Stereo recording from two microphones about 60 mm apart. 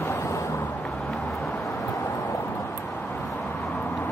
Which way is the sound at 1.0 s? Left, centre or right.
Left.